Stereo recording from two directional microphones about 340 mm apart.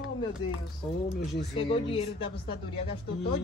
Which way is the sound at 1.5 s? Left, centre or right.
Centre.